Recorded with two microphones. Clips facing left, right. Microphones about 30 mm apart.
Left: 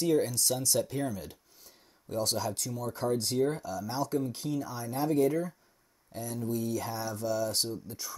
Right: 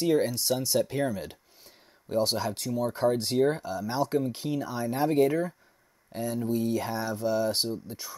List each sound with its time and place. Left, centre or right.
0.0 s speech: right